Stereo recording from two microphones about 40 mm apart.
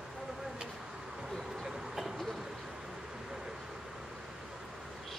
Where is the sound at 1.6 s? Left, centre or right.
Centre.